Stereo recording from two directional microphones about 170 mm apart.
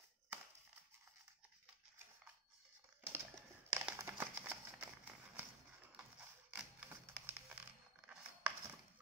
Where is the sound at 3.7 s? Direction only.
15° right (ahead or behind).